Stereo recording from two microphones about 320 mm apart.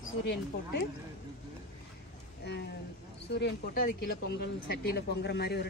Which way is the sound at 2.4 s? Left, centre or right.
Left.